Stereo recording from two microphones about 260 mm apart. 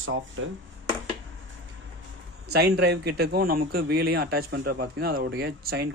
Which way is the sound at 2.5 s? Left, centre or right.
Right.